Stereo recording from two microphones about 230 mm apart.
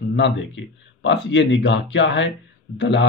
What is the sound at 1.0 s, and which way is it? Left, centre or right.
Speech, left.